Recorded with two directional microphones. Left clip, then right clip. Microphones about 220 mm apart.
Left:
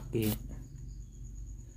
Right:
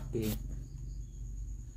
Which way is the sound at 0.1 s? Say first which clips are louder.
Left 3 dB; 30° left (ahead or behind).